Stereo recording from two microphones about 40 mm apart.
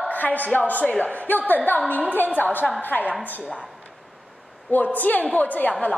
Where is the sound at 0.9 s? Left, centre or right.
Left.